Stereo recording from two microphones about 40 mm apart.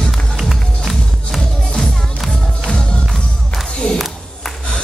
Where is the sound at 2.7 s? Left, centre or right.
Left.